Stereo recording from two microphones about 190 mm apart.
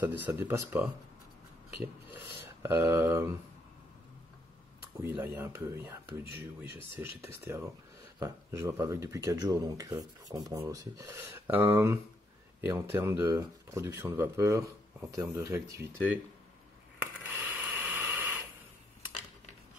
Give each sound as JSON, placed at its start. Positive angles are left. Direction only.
{"t": 0.0, "sound": "speech", "side_deg": -10}
{"t": 2.0, "sound": "speech", "side_deg": -10}
{"t": 5.0, "sound": "speech", "side_deg": -10}
{"t": 7.3, "sound": "speech", "side_deg": -15}
{"t": 17.0, "sound": "a sound", "side_deg": -10}